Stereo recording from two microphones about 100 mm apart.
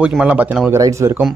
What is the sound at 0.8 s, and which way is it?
Speech, 30° right (ahead or behind).